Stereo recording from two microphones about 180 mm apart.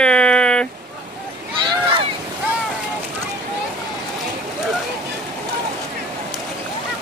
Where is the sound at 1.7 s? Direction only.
30° right (ahead or behind).